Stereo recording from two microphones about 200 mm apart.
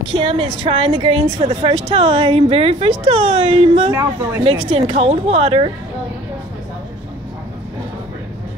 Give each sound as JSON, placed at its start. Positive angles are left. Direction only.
{"t": 0.1, "sound": "a woman's voice", "side_deg": -25}
{"t": 3.9, "sound": "speech", "side_deg": -15}
{"t": 4.6, "sound": "a woman's voice", "side_deg": -30}